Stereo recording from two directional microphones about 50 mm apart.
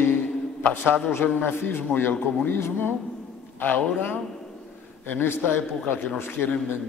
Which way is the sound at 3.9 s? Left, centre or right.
Left.